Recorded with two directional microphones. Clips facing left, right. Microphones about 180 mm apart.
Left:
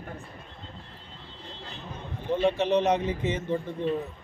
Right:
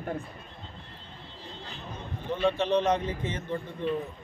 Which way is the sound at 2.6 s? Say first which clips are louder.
Left 2 dB; 10° left (ahead or behind).